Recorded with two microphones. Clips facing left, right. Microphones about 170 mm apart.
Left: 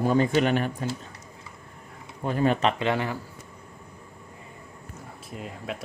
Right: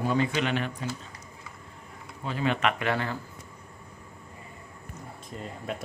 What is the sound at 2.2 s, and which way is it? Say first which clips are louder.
Speech: left 4 dB; 45° left (ahead or behind).